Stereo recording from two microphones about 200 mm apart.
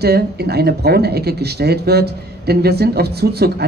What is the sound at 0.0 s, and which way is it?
Speech, 55° right (ahead or behind).